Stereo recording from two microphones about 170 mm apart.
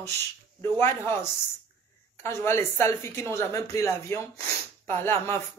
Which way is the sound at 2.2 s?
15° left (ahead or behind).